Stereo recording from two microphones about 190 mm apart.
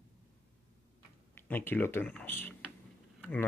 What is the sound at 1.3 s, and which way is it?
Speech, 10° left (ahead or behind).